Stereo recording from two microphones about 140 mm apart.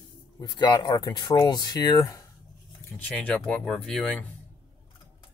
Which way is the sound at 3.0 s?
10° left (ahead or behind).